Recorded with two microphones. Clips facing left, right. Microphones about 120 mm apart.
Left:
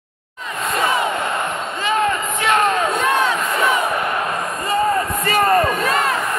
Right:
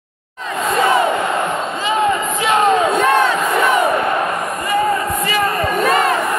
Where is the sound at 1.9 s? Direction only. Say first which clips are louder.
Right 2 dB; 20° right (ahead or behind).